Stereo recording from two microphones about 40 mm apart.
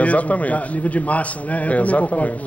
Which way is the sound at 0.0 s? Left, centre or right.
Left.